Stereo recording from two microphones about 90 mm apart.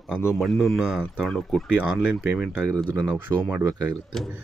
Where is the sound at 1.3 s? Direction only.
5° left (ahead or behind).